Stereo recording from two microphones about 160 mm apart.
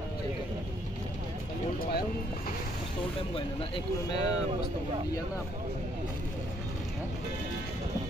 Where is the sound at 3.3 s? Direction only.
30° left (ahead or behind).